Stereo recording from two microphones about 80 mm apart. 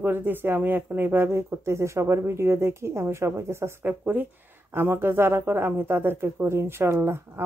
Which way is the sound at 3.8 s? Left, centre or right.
Right.